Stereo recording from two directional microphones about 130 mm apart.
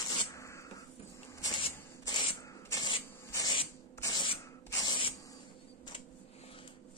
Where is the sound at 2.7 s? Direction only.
30° left (ahead or behind).